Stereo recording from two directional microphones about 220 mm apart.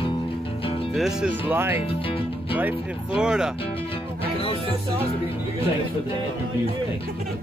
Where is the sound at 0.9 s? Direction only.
Centre (ahead or behind).